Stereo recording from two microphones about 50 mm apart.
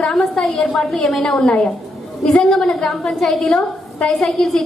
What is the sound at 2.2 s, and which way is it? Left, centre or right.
A woman's voice, centre.